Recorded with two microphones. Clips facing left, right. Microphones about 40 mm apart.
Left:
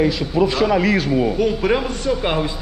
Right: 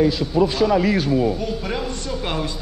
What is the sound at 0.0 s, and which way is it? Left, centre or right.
A man's voice, left.